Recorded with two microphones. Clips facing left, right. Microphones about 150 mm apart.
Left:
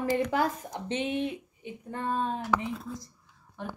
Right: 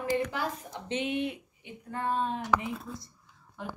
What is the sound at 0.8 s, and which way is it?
A woman's voice, 35° left (ahead or behind).